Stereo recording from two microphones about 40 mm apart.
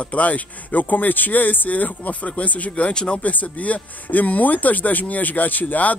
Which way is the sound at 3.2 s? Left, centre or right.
Left.